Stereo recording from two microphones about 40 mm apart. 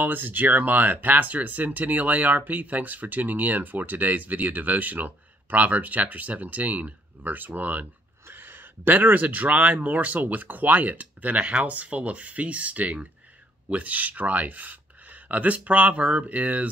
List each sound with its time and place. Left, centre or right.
0.0 s speech: right
8.3 s speech: right